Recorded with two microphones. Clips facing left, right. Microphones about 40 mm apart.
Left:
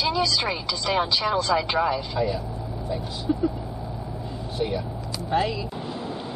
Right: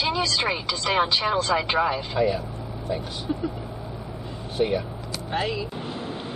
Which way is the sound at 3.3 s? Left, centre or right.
Centre.